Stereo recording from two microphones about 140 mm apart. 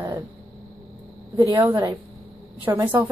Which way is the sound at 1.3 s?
25° right (ahead or behind).